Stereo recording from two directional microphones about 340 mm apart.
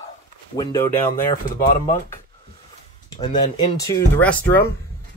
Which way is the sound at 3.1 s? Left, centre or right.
Centre.